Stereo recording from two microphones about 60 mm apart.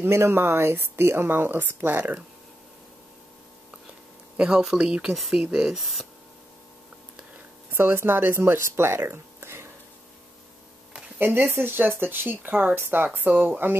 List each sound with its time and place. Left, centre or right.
0.0 s speech: right
4.4 s speech: centre
5.1 s speech: centre
7.7 s speech: right
11.1 s speech: right